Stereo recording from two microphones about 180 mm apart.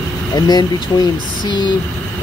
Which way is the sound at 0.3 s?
20° left (ahead or behind).